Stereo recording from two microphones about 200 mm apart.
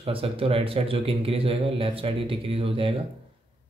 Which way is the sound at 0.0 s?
30° right (ahead or behind).